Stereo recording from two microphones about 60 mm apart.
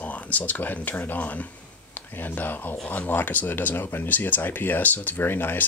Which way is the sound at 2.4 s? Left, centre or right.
Left.